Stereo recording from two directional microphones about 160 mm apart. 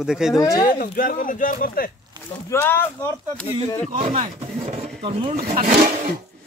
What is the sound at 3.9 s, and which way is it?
Speech, 35° right (ahead or behind).